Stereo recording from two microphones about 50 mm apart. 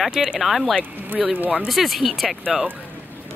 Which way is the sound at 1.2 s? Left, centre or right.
Right.